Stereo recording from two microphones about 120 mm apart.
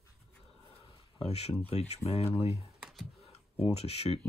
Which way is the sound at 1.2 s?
60° left (ahead or behind).